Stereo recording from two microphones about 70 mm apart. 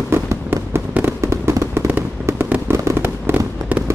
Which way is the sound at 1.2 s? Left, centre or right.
Right.